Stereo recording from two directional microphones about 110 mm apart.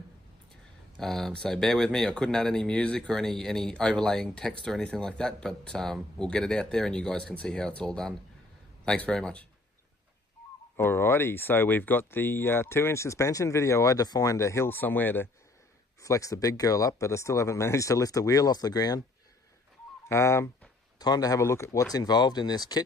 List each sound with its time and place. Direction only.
0.9 s speech: 5° left (ahead or behind)
10.8 s speech: 20° left (ahead or behind)
16.0 s speech: 30° left (ahead or behind)
20.1 s speech: 25° left (ahead or behind)
21.0 s speech: 35° left (ahead or behind)
21.9 s speech: 40° left (ahead or behind)